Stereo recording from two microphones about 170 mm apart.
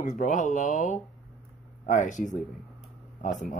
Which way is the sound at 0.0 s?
45° left (ahead or behind).